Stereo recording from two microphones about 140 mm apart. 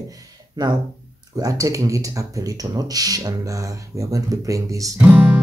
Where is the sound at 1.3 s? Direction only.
25° right (ahead or behind).